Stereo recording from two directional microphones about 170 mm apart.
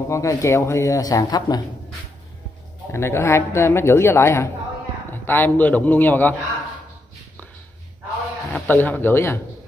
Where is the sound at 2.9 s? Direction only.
15° left (ahead or behind).